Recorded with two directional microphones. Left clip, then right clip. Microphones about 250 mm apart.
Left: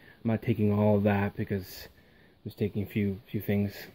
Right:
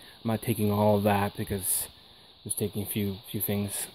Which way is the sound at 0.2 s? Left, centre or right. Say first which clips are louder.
Even; centre.